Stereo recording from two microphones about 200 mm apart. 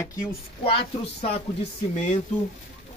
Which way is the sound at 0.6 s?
30° left (ahead or behind).